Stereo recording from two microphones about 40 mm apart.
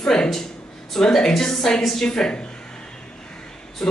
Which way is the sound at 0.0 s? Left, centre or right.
Centre.